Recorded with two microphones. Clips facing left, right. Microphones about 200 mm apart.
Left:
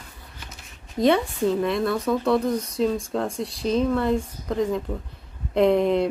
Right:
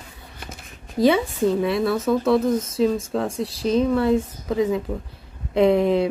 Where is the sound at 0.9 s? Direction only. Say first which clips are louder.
Right 2 dB; centre (ahead or behind).